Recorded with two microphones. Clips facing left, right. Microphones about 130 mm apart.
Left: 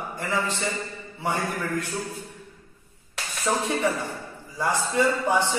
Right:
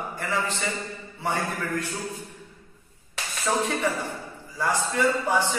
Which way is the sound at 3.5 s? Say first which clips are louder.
Left 1 dB; 15° left (ahead or behind).